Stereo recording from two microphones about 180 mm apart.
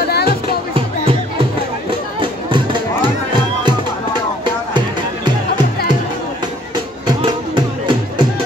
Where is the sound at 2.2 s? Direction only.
25° right (ahead or behind).